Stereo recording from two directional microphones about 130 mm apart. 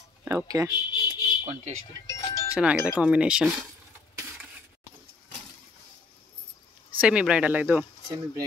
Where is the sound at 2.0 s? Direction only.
25° left (ahead or behind).